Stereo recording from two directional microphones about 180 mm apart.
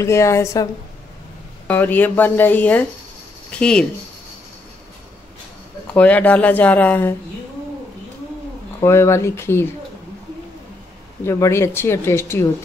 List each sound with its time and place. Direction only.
0.0 s speech: 15° left (ahead or behind)
1.7 s speech: 10° left (ahead or behind)
5.9 s speech: 10° left (ahead or behind)
8.8 s speech: 15° left (ahead or behind)
11.2 s speech: 15° left (ahead or behind)